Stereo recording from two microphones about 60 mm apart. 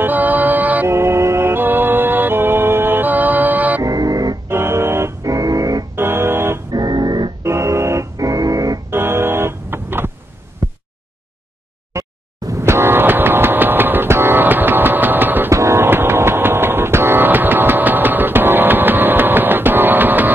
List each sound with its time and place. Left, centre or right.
0.0 s music: right
0.8 s music: right
3.8 s music: right
4.5 s music: right
5.2 s music: right
5.9 s music: right
8.9 s music: right
10.6 s a sound: right
11.9 s a sound: right
12.6 s train: right
15.5 s a sound: right